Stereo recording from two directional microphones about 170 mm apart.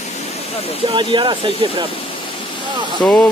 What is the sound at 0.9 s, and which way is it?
Speech, 30° right (ahead or behind).